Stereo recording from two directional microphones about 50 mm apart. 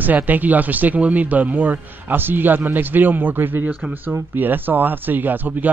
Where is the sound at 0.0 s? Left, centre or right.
Right.